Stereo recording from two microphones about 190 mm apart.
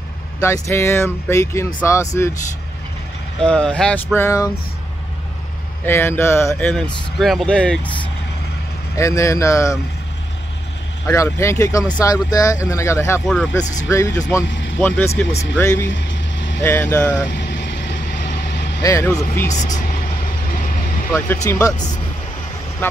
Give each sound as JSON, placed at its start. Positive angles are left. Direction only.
{"t": 0.4, "sound": "speech", "side_deg": 15}
{"t": 3.4, "sound": "speech", "side_deg": 5}
{"t": 5.9, "sound": "speech", "side_deg": 10}
{"t": 11.1, "sound": "speech", "side_deg": 15}
{"t": 13.3, "sound": "speech", "side_deg": 0}
{"t": 13.8, "sound": "speech", "side_deg": 15}
{"t": 14.5, "sound": "vehicle", "side_deg": 70}
{"t": 14.8, "sound": "speech", "side_deg": 10}
{"t": 15.9, "sound": "vehicle", "side_deg": 75}
{"t": 16.6, "sound": "speech", "side_deg": 10}
{"t": 17.3, "sound": "vehicle", "side_deg": 65}
{"t": 18.8, "sound": "speech", "side_deg": 15}
{"t": 19.5, "sound": "speech", "side_deg": 40}
{"t": 21.5, "sound": "speech", "side_deg": 10}